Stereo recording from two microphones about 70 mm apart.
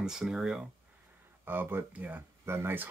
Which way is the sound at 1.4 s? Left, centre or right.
Right.